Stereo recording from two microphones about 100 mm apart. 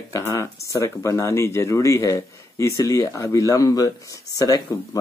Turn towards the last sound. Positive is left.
turn(degrees=35)  # may be behind; listen again after turning